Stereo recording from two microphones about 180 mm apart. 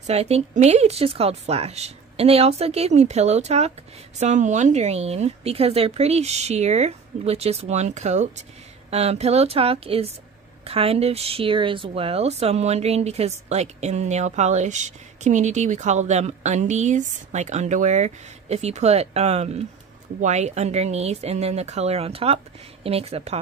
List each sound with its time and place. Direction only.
0.0 s a woman's voice: 35° right (ahead or behind)